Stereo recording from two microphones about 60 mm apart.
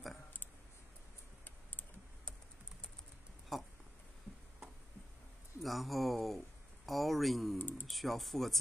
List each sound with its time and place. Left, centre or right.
3.5 s a sound: centre
5.6 s speech: centre
7.5 s speech: left
7.8 s speech: centre